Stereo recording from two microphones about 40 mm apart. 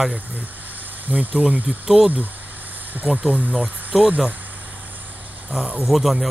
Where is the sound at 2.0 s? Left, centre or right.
Right.